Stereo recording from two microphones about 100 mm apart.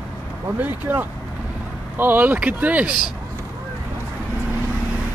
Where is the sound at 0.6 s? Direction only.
20° right (ahead or behind).